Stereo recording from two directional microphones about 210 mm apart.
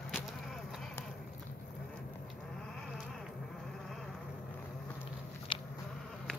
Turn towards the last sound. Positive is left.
turn(degrees=25)  # may be behind; listen again after turning